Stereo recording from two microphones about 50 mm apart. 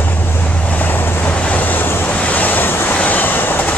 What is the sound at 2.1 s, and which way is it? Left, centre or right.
Waves, left.